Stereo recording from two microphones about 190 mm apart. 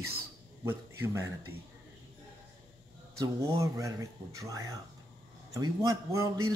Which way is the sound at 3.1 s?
15° right (ahead or behind).